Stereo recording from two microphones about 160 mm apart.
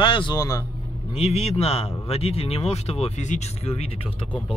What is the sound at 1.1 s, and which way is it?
Speech, 40° left (ahead or behind).